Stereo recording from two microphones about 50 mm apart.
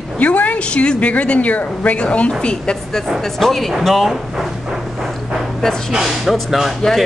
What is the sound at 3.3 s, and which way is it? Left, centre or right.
Speech, centre.